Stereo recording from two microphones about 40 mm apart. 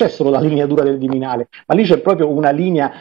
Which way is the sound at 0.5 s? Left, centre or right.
Centre.